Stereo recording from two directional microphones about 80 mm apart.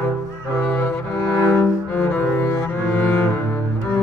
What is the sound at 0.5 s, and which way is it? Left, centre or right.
Cello, left.